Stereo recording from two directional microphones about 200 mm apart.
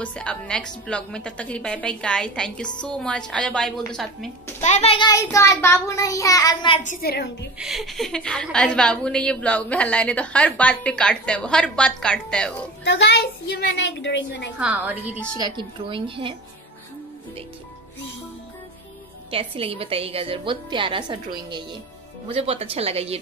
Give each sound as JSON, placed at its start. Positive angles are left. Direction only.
{"t": 0.0, "sound": "a woman's voice", "side_deg": 5}
{"t": 4.6, "sound": "a child's voice", "side_deg": 35}
{"t": 6.8, "sound": "a woman's voice", "side_deg": 45}
{"t": 7.5, "sound": "a woman's voice", "side_deg": 0}
{"t": 12.8, "sound": "a woman's voice", "side_deg": 60}
{"t": 14.6, "sound": "a woman's voice", "side_deg": -10}
{"t": 15.3, "sound": "a woman's voice", "side_deg": -20}
{"t": 19.3, "sound": "a woman's voice", "side_deg": -30}